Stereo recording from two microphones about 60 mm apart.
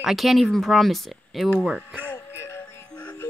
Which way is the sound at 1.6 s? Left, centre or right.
Centre.